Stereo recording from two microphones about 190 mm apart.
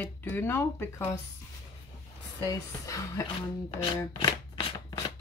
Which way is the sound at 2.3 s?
15° left (ahead or behind).